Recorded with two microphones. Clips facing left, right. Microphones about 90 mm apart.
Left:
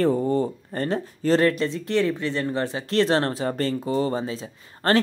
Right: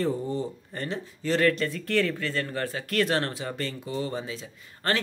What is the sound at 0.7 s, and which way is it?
Speech, 40° left (ahead or behind).